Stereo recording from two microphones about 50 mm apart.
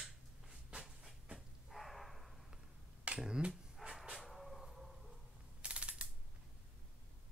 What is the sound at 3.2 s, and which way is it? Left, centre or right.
Dog, centre.